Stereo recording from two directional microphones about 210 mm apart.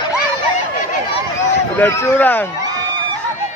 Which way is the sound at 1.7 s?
10° left (ahead or behind).